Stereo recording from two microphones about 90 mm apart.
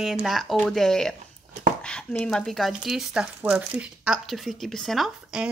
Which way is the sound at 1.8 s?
10° left (ahead or behind).